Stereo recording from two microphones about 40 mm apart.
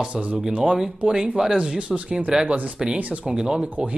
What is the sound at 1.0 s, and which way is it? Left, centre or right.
Speech, right.